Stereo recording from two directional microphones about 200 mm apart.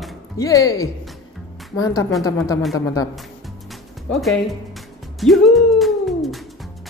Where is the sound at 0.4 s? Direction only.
15° left (ahead or behind).